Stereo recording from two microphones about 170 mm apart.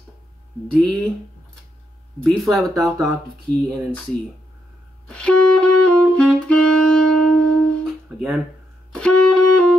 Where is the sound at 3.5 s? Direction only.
20° right (ahead or behind).